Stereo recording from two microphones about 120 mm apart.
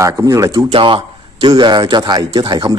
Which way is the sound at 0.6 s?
45° right (ahead or behind).